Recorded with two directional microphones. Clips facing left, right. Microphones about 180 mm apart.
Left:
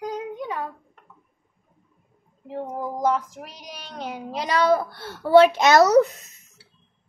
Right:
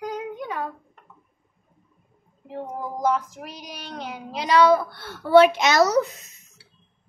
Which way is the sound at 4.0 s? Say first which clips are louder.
Left 3 dB; 40° left (ahead or behind).